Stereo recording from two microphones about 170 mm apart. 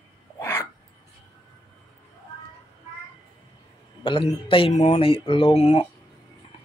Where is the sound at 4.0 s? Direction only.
30° left (ahead or behind).